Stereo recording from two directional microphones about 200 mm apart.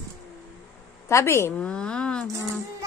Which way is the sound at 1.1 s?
15° left (ahead or behind).